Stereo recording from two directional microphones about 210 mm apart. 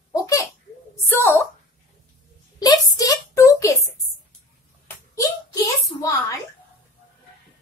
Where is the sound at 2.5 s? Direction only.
20° left (ahead or behind).